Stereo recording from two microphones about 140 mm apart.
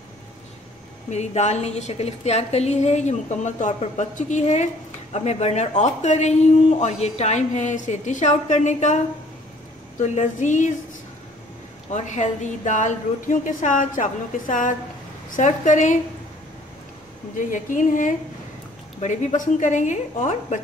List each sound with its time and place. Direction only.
1.1 s a woman's voice: 55° left (ahead or behind)
11.9 s speech: 60° left (ahead or behind)
17.5 s speech: 65° left (ahead or behind)